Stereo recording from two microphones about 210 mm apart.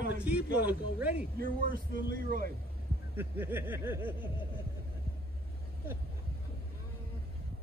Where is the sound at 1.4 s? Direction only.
45° right (ahead or behind).